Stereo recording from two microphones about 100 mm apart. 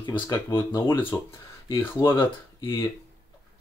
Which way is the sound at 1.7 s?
25° left (ahead or behind).